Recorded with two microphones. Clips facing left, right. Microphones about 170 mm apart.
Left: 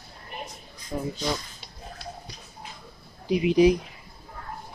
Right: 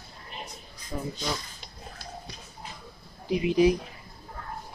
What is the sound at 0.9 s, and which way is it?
Speech, 20° left (ahead or behind).